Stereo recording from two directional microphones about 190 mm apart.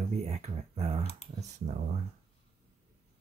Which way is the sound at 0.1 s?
35° right (ahead or behind).